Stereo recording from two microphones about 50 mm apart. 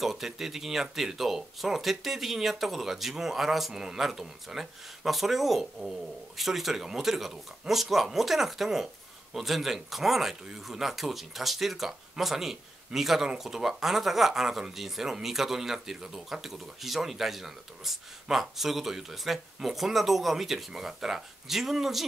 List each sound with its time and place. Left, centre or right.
0.0 s speech: centre